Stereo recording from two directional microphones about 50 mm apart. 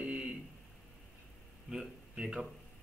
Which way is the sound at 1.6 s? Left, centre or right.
Centre.